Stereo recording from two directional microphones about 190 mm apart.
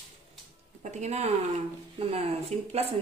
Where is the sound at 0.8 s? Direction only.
35° right (ahead or behind).